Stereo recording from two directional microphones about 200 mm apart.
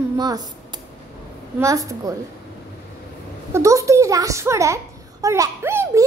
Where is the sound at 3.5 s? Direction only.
15° right (ahead or behind).